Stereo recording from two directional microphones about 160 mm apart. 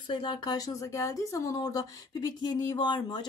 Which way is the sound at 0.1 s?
30° left (ahead or behind).